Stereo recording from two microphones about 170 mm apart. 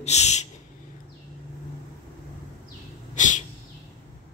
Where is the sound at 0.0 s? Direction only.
40° left (ahead or behind).